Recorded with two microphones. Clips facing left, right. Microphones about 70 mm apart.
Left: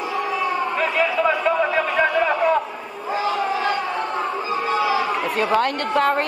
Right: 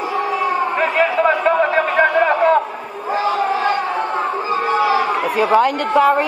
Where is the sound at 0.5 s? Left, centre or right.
Right.